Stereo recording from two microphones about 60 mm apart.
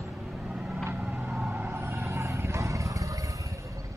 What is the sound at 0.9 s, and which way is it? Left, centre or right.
Vehicle, right.